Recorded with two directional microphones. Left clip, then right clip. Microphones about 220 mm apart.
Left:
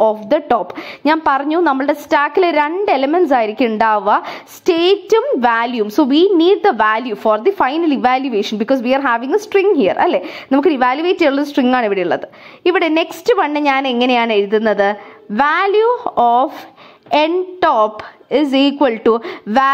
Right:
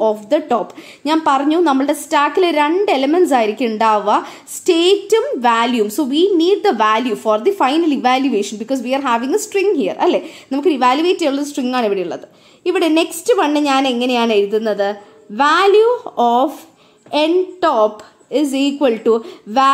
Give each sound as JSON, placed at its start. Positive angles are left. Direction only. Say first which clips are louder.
{"t": 0.0, "sound": "a woman's voice", "louder": "left 2 dB", "side_deg": 20}